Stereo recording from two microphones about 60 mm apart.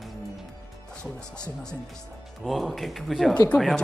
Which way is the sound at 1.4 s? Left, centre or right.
Centre.